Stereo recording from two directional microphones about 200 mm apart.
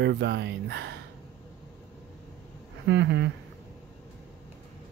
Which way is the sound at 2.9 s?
60° right (ahead or behind).